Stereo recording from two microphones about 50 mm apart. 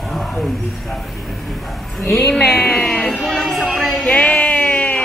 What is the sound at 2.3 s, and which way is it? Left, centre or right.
Speech, centre.